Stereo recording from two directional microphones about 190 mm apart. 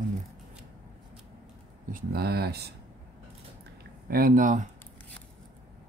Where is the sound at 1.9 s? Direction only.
55° right (ahead or behind).